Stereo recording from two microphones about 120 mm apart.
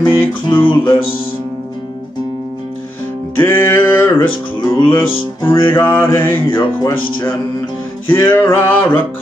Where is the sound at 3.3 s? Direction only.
20° left (ahead or behind).